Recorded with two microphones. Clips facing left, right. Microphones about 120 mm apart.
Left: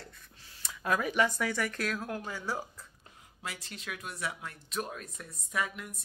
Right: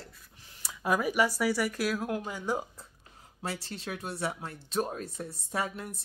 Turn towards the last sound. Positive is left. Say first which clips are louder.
# right 2 dB
turn(degrees=-35)  # may be behind; listen again after turning